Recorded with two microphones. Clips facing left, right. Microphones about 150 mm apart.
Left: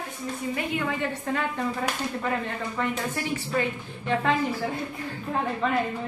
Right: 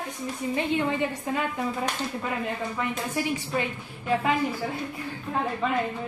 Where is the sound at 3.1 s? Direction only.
20° right (ahead or behind).